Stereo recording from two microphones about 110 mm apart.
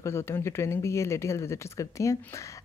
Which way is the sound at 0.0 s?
25° left (ahead or behind).